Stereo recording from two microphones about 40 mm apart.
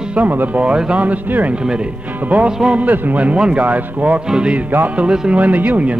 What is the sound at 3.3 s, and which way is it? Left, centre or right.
Speech, right.